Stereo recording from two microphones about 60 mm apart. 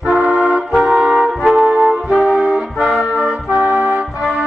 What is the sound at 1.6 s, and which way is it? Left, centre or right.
Music, right.